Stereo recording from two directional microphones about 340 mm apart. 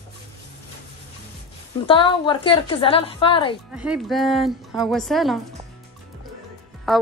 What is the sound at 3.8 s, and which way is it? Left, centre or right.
Speech, centre.